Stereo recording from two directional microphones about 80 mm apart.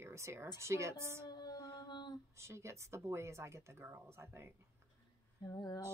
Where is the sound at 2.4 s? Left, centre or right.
Right.